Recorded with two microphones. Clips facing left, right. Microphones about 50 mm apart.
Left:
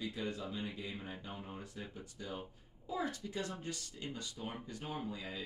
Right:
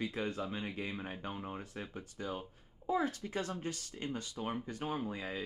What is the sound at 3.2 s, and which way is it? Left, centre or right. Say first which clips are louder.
Speech: right 3 dB; right.